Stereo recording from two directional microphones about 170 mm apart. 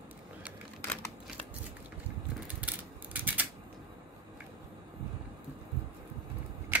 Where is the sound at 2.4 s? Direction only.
10° right (ahead or behind).